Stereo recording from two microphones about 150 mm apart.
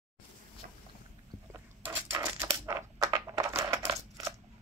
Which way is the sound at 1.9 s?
15° right (ahead or behind).